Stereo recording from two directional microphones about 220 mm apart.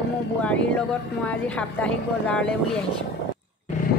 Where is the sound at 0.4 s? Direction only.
5° left (ahead or behind).